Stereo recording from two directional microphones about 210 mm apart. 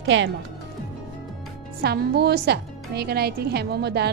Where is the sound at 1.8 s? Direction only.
50° right (ahead or behind).